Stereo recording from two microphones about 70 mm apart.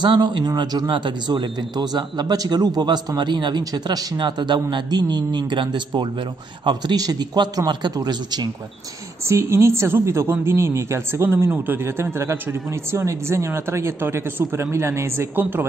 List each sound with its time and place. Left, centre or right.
0.0 s a man's voice: right
9.3 s a man's voice: right